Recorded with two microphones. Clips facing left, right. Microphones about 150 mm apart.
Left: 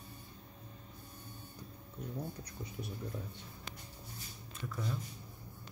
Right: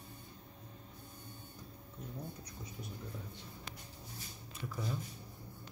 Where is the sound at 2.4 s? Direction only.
65° left (ahead or behind).